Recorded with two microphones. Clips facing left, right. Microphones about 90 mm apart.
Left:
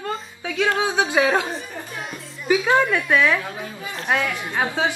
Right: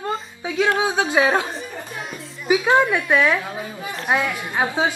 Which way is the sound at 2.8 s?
15° right (ahead or behind).